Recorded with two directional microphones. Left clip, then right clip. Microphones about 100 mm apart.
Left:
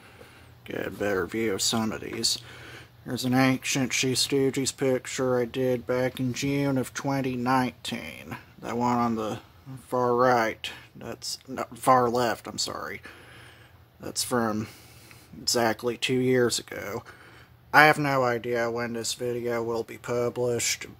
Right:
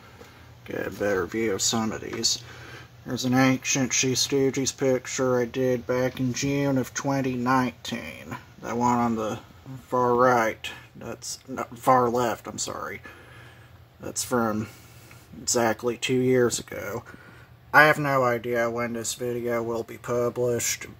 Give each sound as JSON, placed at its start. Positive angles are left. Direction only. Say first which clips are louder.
{"t": 0.7, "sound": "speech", "louder": "right 2 dB", "side_deg": 30}